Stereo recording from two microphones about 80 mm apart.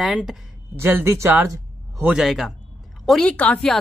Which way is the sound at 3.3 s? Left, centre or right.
Centre.